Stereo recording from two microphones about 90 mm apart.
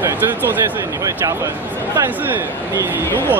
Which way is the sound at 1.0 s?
40° right (ahead or behind).